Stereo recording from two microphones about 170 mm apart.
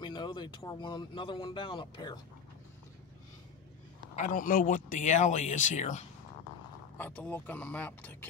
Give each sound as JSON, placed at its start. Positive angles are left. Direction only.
{"t": 0.0, "sound": "speech", "side_deg": 25}
{"t": 4.1, "sound": "speech", "side_deg": 50}
{"t": 7.0, "sound": "speech", "side_deg": 10}